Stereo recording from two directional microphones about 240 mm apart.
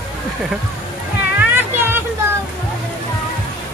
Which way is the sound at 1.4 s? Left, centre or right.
Centre.